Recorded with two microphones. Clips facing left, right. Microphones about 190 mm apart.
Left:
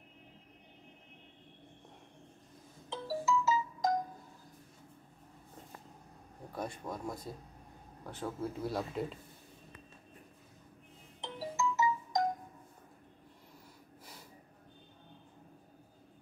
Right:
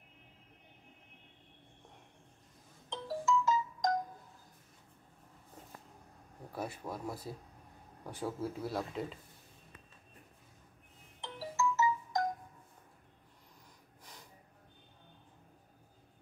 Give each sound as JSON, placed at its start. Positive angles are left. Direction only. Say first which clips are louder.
{"t": 2.9, "sound": "music", "louder": "even", "side_deg": 5}
{"t": 6.5, "sound": "speech", "louder": "even", "side_deg": -5}
{"t": 11.1, "sound": "music", "louder": "even", "side_deg": 15}